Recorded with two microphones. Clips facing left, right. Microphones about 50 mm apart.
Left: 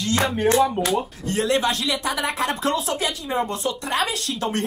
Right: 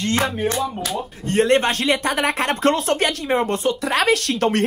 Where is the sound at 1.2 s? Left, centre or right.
Right.